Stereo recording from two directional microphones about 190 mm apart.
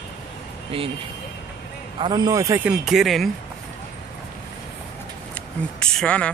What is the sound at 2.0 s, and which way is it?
A man's voice, 25° right (ahead or behind).